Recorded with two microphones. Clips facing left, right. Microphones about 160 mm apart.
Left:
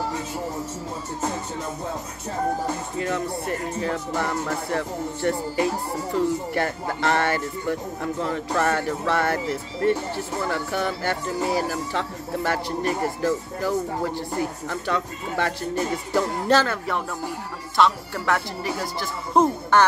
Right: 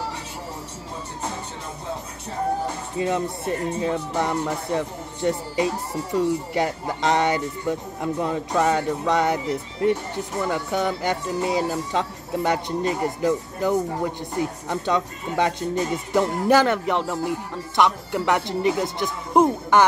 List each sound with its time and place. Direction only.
3.0 s speech: 20° right (ahead or behind)